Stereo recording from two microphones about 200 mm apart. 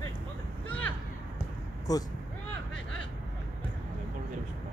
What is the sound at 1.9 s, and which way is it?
Speech, 20° left (ahead or behind).